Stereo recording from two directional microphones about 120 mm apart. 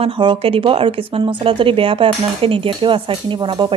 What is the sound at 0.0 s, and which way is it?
Speech, 45° right (ahead or behind).